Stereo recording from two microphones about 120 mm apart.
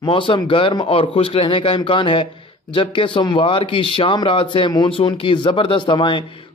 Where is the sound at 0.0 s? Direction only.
45° left (ahead or behind).